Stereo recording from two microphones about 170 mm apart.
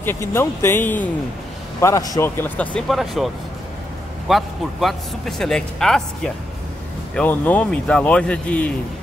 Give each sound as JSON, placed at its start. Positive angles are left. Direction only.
{"t": 0.0, "sound": "speech", "side_deg": 15}
{"t": 4.3, "sound": "a man's voice", "side_deg": 0}